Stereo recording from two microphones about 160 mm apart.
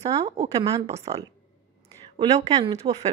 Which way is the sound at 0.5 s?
20° right (ahead or behind).